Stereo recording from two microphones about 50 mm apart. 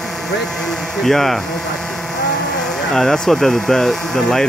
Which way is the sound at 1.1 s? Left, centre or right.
Centre.